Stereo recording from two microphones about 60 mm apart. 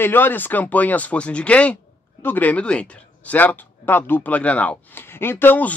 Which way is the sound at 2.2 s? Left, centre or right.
Left.